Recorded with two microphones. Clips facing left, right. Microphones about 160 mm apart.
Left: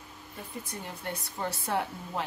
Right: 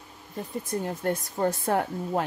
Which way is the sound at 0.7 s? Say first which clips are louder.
Right 12 dB; 45° right (ahead or behind).